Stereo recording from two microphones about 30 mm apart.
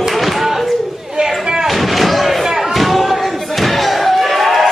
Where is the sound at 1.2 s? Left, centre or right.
Right.